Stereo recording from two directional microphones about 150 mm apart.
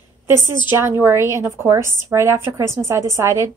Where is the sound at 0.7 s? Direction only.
15° right (ahead or behind).